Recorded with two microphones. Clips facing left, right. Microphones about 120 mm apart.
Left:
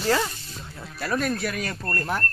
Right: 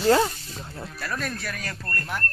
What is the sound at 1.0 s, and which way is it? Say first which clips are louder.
Speech: left 7 dB; 20° left (ahead or behind).